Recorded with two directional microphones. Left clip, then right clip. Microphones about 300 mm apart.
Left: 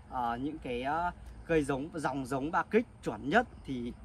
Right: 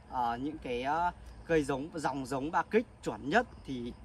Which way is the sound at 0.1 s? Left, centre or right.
Centre.